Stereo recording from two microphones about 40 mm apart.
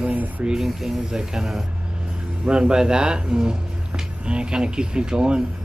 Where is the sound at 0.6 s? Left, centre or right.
Centre.